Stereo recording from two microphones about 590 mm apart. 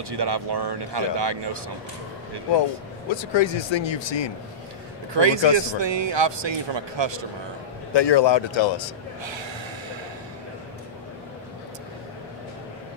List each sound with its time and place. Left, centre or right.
0.1 s speech: right
3.2 s speech: left
5.1 s speech: right
7.9 s speech: left
9.2 s gasp: right